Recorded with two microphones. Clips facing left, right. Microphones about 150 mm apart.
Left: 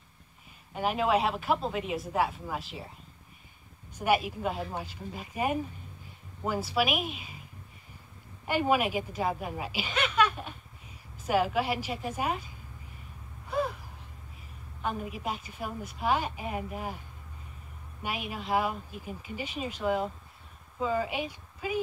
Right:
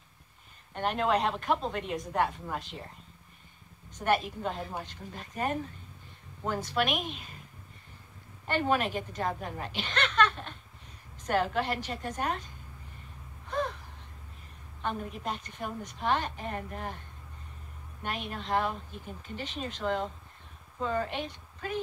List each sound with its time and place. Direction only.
0.7 s speech: 5° left (ahead or behind)
3.9 s a woman's voice: 10° left (ahead or behind)
8.5 s a woman's voice: 10° left (ahead or behind)
13.5 s a sound: 10° left (ahead or behind)
14.8 s a woman's voice: 5° left (ahead or behind)
18.0 s a woman's voice: 10° left (ahead or behind)